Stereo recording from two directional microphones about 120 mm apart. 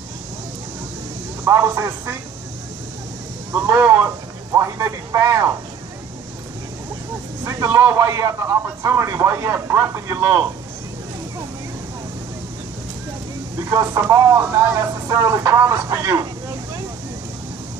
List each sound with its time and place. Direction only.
1.4 s a man's voice: 25° right (ahead or behind)
3.5 s a man's voice: 15° right (ahead or behind)
7.4 s a man's voice: 25° right (ahead or behind)
13.7 s a man's voice: 25° right (ahead or behind)